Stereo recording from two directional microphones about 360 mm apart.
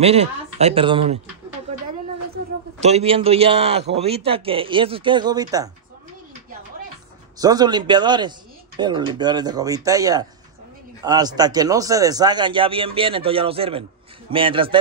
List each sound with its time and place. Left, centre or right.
0.0 s speech: centre
2.3 s speech: centre
7.3 s speech: centre